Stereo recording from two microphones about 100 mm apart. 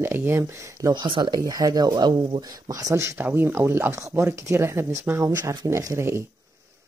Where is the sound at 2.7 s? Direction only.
30° right (ahead or behind).